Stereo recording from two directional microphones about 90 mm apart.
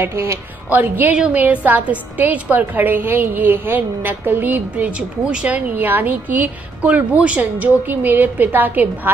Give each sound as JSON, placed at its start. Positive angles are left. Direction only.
{"t": 0.0, "sound": "a woman's voice", "side_deg": -30}